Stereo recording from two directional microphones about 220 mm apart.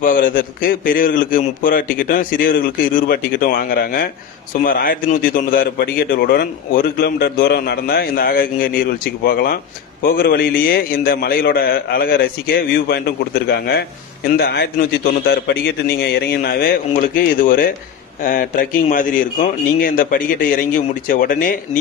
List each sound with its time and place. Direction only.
0.0 s a man's voice: 40° left (ahead or behind)